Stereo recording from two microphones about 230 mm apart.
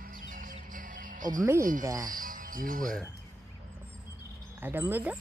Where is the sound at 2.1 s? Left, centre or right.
Right.